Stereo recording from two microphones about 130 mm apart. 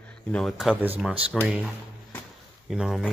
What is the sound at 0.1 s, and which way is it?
Speech, 5° left (ahead or behind).